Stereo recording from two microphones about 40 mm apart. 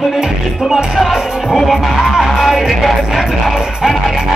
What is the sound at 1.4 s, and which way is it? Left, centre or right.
Music, centre.